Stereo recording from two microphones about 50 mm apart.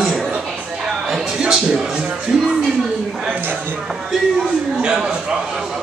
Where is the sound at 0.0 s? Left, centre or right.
Centre.